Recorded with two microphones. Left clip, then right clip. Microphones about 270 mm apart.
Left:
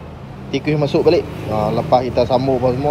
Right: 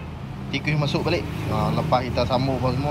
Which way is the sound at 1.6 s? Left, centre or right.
Right.